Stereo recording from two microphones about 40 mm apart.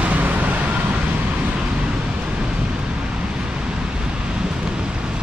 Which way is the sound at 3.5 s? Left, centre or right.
Right.